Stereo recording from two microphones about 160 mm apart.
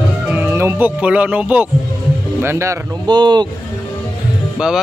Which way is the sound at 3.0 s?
30° right (ahead or behind).